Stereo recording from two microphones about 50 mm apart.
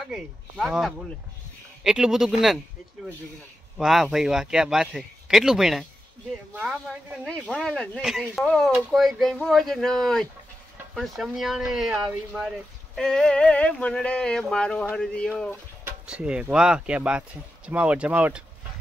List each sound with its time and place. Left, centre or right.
0.1 s speech: centre
3.7 s speech: centre
7.2 s speech: centre
8.0 s speech: centre
8.9 s speech: centre
11.0 s speech: centre
13.1 s speech: left
16.1 s speech: right